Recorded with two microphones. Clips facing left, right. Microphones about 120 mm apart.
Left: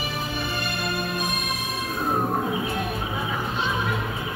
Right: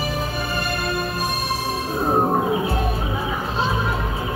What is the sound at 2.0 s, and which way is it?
Music, 35° right (ahead or behind).